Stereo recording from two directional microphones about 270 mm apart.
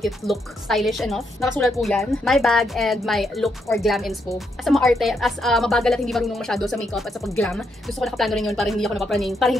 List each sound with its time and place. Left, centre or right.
0.0 s a woman's voice: centre